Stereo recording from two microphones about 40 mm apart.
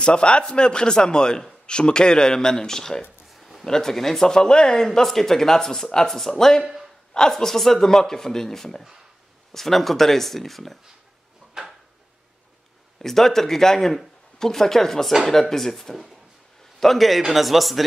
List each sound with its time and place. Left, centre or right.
0.0 s speech: left
3.3 s a sound: centre
3.6 s speech: centre
6.6 s a man's voice: centre
7.2 s speech: centre
11.6 s drawer open or close: centre
13.0 s speech: centre